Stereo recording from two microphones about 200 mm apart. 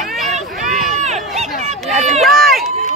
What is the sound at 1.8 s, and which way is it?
Run, centre (ahead or behind).